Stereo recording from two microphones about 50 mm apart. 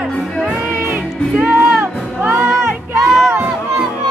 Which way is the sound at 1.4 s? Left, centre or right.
Right.